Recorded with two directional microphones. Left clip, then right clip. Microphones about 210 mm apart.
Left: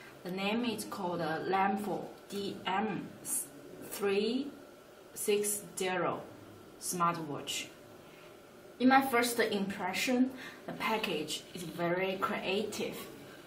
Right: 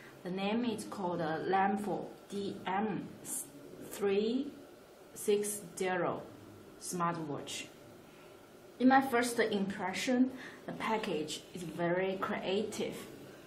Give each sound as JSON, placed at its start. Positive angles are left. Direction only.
{"t": 0.4, "sound": "a woman's voice", "side_deg": -5}
{"t": 8.7, "sound": "a woman's voice", "side_deg": -10}